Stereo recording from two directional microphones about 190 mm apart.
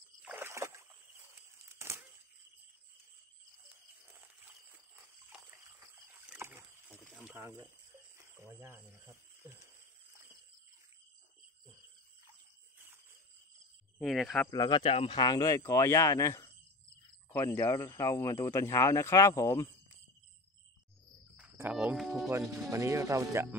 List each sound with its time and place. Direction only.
0.2 s rowboat: 10° right (ahead or behind)
1.7 s a sound: 15° right (ahead or behind)
6.2 s rowboat: 10° right (ahead or behind)
7.0 s a sound: centre (ahead or behind)
7.3 s speech: 15° right (ahead or behind)
13.9 s speech: centre (ahead or behind)
14.5 s speech: 20° left (ahead or behind)
21.4 s cricket: 5° right (ahead or behind)
22.3 s speech: 20° right (ahead or behind)